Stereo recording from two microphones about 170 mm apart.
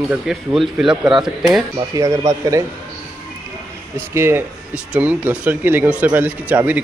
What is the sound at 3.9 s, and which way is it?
Speech, 15° right (ahead or behind).